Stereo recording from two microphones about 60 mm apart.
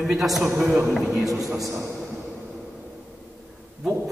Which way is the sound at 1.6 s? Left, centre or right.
Right.